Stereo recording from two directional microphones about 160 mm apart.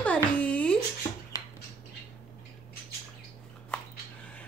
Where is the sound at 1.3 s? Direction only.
20° left (ahead or behind).